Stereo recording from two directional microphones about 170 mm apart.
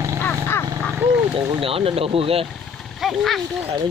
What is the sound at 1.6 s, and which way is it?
Speech, 35° right (ahead or behind).